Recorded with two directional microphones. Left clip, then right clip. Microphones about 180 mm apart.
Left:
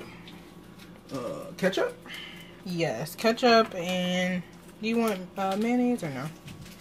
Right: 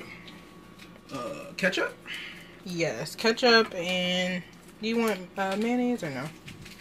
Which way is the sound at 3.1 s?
Centre (ahead or behind).